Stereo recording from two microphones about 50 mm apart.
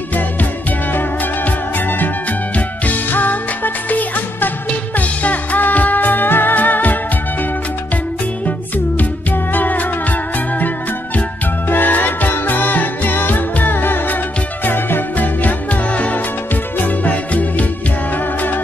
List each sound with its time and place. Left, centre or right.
0.9 s music: left
8.5 s music: left
11.7 s music: left